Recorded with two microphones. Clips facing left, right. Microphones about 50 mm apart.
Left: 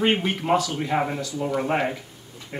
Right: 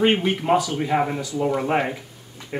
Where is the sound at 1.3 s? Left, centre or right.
Centre.